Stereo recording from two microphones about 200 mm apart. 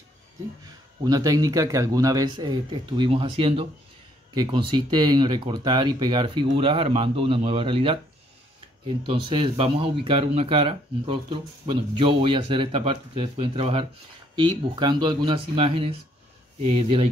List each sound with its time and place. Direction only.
1.0 s speech: 20° right (ahead or behind)